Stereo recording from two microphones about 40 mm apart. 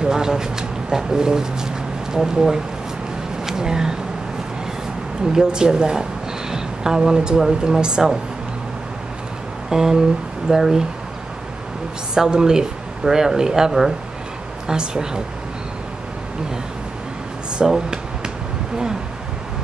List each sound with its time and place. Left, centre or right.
0.0 s speech: centre
5.3 s speech: centre
9.7 s a sound: centre
10.5 s speech: centre
12.1 s speech: centre
17.6 s a sound: centre